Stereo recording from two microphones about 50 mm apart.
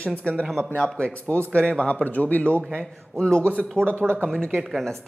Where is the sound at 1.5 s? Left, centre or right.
Centre.